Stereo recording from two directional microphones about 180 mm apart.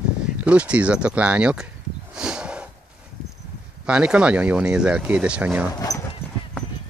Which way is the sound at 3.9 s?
5° right (ahead or behind).